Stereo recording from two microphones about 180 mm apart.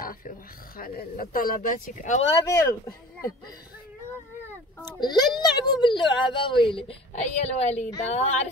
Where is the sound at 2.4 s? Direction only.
15° left (ahead or behind).